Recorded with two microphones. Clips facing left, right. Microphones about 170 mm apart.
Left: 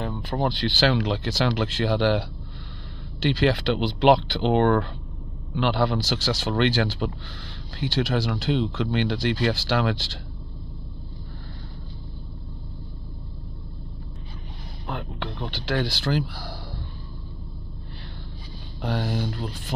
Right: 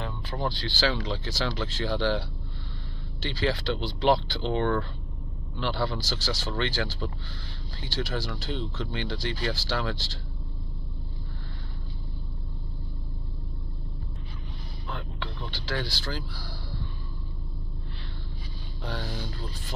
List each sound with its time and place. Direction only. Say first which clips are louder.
0.0 s speech: left 6 dB; 50° left (ahead or behind); by 10.1 s 70° left (ahead or behind)
14.9 s speech: left 5 dB; 55° left (ahead or behind)
18.8 s speech: left 8 dB; 60° left (ahead or behind)